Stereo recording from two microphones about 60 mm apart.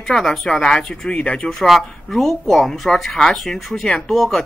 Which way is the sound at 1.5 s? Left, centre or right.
Centre.